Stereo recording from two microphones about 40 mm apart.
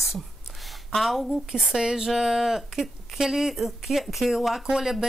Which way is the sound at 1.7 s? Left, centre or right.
Centre.